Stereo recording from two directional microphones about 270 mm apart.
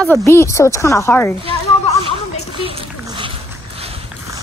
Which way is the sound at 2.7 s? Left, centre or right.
Centre.